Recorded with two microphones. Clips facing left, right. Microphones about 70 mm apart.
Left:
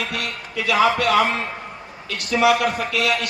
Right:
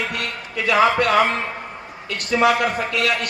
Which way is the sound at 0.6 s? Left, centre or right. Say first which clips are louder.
Right 1 dB; right.